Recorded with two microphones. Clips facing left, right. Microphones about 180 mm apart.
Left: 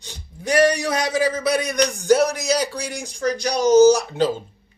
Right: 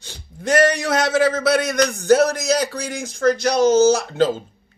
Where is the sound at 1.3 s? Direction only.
15° left (ahead or behind).